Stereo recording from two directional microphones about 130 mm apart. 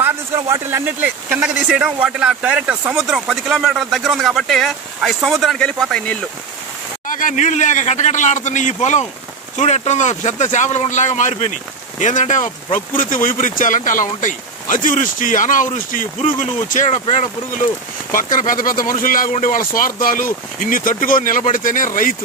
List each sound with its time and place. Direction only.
0.0 s speech: 20° right (ahead or behind); by 6.1 s 5° left (ahead or behind)
7.1 s a man's voice: 90° left; by 12.4 s 70° left (ahead or behind)
12.7 s speech: 85° left
18.1 s speech: 90° left